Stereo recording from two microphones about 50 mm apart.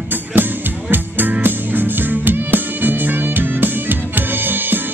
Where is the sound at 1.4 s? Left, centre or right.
Right.